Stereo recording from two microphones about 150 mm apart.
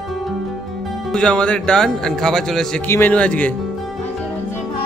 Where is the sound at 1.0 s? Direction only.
5° left (ahead or behind).